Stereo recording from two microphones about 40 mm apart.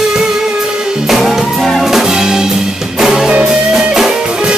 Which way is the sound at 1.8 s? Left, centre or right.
Centre.